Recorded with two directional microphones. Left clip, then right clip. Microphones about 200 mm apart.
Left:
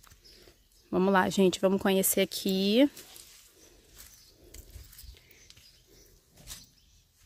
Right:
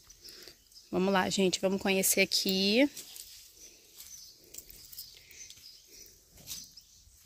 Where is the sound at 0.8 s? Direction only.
20° left (ahead or behind).